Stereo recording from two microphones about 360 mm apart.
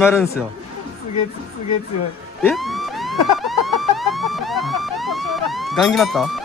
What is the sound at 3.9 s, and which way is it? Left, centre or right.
Police car, centre.